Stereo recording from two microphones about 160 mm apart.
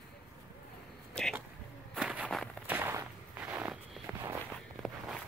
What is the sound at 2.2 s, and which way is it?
Walk, 5° left (ahead or behind).